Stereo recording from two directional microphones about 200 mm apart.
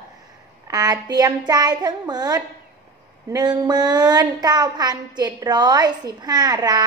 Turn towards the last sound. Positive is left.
turn(degrees=-20)  # may be behind; listen again after turning